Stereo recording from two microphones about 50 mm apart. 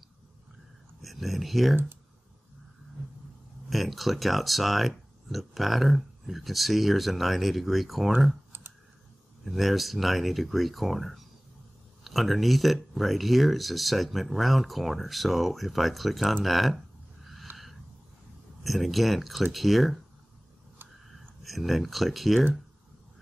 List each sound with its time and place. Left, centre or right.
1.0 s speech: centre
3.7 s speech: centre
8.5 s clicking: right
9.4 s speech: centre
17.5 s a sound: right
18.6 s speech: centre
21.1 s speech: centre